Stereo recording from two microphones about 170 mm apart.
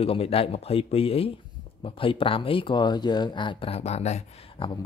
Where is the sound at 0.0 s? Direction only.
35° left (ahead or behind).